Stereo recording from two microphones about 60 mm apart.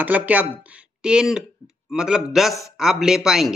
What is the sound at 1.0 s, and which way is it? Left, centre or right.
Speech, centre.